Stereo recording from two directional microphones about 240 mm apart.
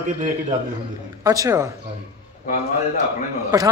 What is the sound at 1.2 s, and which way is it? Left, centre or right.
Speech, centre.